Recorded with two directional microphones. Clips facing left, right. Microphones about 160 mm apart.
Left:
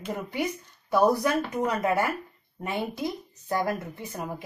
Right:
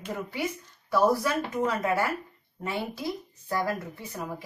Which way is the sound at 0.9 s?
15° left (ahead or behind).